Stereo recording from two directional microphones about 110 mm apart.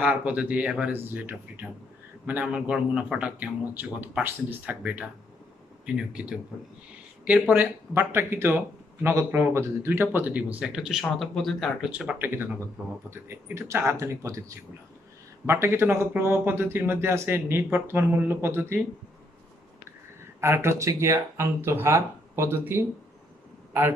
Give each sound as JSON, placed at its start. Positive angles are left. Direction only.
{"t": 0.0, "sound": "speech", "side_deg": -10}
{"t": 11.9, "sound": "speech", "side_deg": -10}
{"t": 20.3, "sound": "speech", "side_deg": -25}